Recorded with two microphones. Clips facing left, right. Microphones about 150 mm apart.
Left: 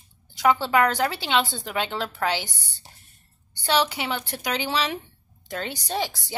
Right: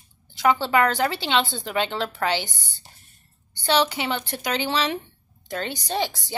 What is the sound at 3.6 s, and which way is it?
A woman's voice, 5° left (ahead or behind).